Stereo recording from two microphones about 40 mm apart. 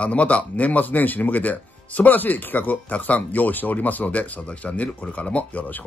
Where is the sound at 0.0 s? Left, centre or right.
Left.